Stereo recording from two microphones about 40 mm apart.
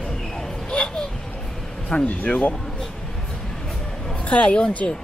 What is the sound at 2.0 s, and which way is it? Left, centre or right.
Speech, left.